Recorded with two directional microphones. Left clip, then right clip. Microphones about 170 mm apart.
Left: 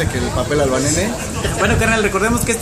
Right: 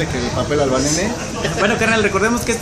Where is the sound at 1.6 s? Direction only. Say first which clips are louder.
Even; 10° left (ahead or behind).